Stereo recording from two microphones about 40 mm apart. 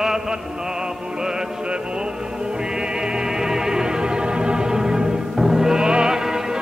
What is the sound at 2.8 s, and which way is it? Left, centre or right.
Music, centre.